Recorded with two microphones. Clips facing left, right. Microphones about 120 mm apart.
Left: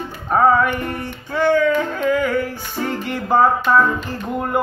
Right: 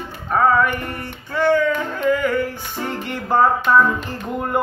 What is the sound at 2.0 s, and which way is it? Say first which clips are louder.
Music: right 2 dB; 10° left (ahead or behind).